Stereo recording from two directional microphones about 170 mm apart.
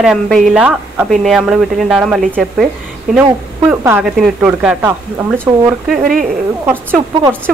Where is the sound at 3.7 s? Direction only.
10° right (ahead or behind).